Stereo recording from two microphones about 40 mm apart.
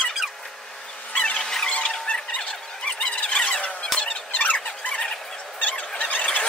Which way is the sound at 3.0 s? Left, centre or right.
Left.